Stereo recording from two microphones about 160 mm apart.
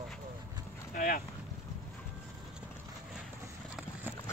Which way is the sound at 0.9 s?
60° left (ahead or behind).